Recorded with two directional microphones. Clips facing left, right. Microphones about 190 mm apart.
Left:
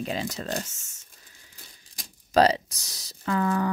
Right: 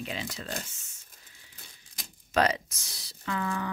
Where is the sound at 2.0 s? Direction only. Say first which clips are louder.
Left 6 dB; 35° left (ahead or behind).